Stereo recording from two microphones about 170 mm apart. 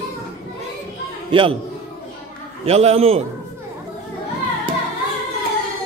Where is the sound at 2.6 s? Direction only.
35° right (ahead or behind).